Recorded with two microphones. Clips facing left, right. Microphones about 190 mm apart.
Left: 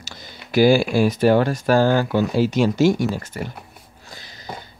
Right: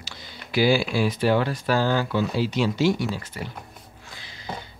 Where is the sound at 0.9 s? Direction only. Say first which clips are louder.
Left 5 dB; 45° left (ahead or behind).